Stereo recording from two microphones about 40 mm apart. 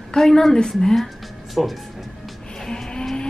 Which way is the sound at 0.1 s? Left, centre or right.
Centre.